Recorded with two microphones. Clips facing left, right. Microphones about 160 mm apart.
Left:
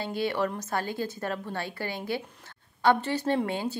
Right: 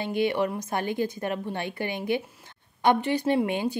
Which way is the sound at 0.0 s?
15° right (ahead or behind).